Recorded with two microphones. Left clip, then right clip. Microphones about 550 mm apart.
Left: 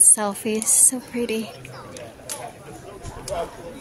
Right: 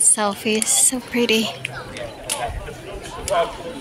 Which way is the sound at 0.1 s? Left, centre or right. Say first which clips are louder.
Right 3 dB; left.